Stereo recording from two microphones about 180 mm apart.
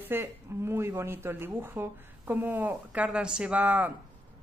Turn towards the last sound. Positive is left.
turn(degrees=-10)  # may be behind; listen again after turning